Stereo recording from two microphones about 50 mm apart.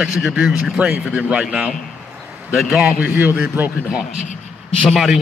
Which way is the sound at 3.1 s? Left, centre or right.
Right.